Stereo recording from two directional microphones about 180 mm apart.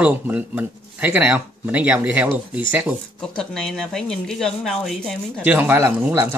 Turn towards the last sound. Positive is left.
turn(degrees=-15)  # may be behind; listen again after turning